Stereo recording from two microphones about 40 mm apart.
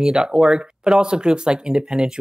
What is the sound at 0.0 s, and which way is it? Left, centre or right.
Speech, centre.